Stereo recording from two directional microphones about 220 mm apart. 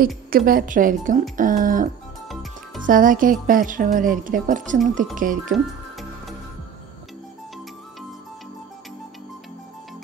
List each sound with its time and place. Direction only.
0.3 s a woman's voice: 40° right (ahead or behind)
2.9 s a woman's voice: 40° right (ahead or behind)